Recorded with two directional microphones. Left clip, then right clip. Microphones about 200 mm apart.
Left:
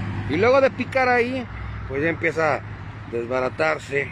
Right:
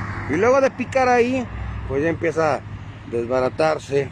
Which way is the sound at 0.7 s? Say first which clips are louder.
Right 2 dB; 10° right (ahead or behind).